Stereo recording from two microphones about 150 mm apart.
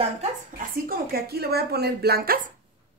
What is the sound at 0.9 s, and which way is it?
Speech, 90° right.